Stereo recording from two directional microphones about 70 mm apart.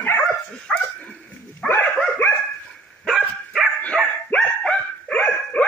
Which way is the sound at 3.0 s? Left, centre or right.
Centre.